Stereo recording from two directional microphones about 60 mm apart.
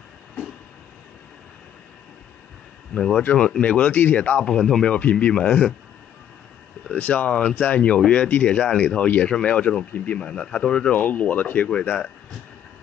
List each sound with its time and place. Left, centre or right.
2.9 s speech: centre
3.2 s speech: left
6.9 s speech: left